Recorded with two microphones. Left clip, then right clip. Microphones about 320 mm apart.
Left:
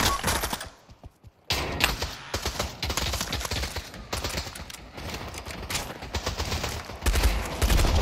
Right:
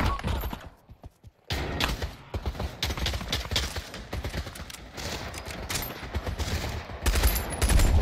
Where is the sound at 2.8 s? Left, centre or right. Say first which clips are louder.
Right 1 dB; centre.